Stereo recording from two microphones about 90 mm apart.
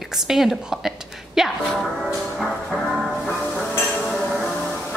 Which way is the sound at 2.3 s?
Centre (ahead or behind).